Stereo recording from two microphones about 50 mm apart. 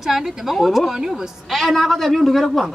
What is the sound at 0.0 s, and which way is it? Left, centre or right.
A woman's voice, centre.